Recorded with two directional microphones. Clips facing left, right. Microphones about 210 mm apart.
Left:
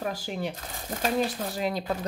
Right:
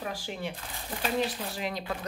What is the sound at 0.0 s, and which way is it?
Speech, 40° left (ahead or behind).